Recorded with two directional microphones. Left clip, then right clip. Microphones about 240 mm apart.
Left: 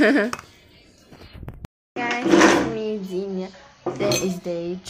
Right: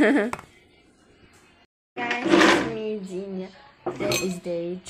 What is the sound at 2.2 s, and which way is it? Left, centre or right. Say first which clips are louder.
Sewing machine: left 2 dB; left.